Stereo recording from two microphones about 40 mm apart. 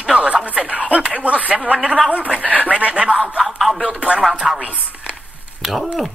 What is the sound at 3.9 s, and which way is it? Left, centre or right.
Speech, right.